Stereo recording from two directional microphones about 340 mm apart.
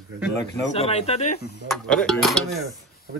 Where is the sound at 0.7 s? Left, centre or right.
Centre.